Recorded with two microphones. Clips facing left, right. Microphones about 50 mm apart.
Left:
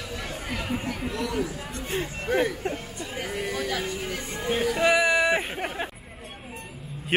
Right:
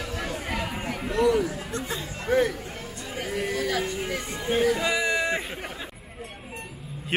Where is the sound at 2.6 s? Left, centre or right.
Left.